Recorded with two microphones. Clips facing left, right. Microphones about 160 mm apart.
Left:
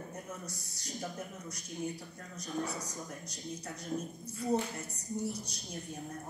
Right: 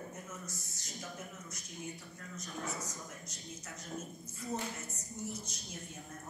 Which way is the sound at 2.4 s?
35° left (ahead or behind).